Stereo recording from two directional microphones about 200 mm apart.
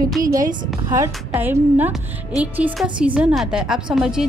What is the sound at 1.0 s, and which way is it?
A woman's voice, 10° right (ahead or behind).